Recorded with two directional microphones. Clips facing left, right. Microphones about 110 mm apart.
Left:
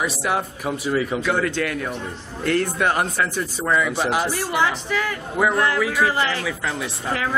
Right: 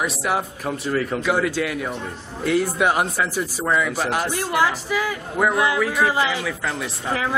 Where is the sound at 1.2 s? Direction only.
5° right (ahead or behind).